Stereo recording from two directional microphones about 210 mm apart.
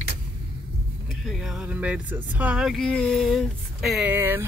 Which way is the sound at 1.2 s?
Centre (ahead or behind).